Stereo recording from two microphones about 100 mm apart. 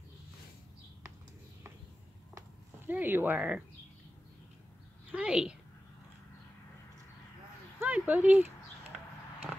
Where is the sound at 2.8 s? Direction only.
20° right (ahead or behind).